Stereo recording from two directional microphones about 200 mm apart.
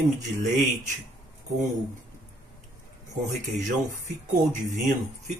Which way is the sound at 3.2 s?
40° right (ahead or behind).